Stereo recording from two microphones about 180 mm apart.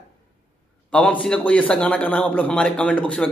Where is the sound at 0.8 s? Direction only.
5° left (ahead or behind).